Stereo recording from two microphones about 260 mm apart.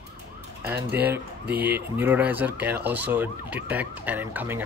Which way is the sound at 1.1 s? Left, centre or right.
Centre.